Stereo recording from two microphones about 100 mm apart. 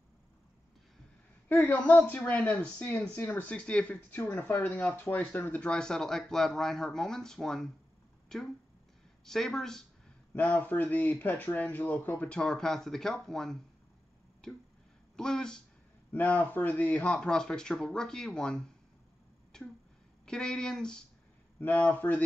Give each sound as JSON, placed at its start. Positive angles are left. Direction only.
{"t": 1.5, "sound": "speech", "side_deg": 20}
{"t": 10.3, "sound": "speech", "side_deg": 15}
{"t": 15.1, "sound": "speech", "side_deg": 5}
{"t": 19.5, "sound": "a sound", "side_deg": 5}
{"t": 20.2, "sound": "speech", "side_deg": 5}